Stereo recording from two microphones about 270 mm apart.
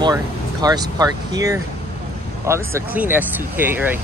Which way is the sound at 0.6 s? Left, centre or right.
Centre.